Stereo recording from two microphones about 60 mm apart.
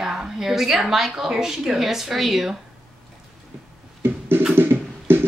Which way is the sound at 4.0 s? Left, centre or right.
Right.